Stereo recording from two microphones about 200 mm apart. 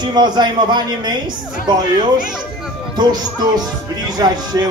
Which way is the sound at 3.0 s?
20° right (ahead or behind).